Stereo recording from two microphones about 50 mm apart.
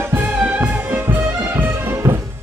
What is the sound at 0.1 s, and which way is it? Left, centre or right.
Music, right.